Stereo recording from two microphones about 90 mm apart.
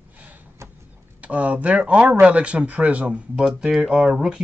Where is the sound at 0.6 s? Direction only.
30° right (ahead or behind).